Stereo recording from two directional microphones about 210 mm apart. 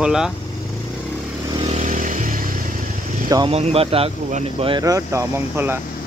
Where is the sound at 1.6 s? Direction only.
35° right (ahead or behind).